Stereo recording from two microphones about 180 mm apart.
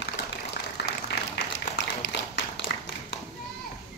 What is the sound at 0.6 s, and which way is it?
Applause, 60° left (ahead or behind).